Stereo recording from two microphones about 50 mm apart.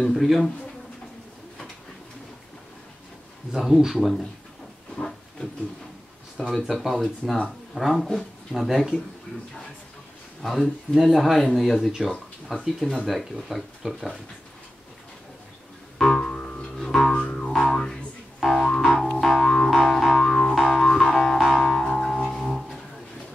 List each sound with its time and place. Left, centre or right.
0.1 s speech: centre
3.5 s speech: centre
4.9 s a sound: centre
6.5 s speech: centre
10.4 s speech: centre
12.5 s speech: centre
12.9 s speech: centre
16.0 s music: centre
16.3 s music: centre
16.7 s music: centre
17.1 s music: centre
17.5 s music: centre
18.7 s music: centre